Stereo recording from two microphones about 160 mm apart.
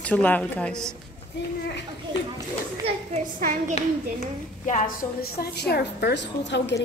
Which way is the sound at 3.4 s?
55° right (ahead or behind).